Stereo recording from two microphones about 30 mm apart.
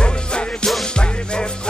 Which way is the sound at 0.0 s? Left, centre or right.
Left.